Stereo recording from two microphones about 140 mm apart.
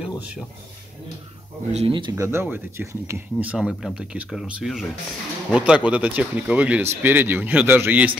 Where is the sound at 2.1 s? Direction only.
20° right (ahead or behind).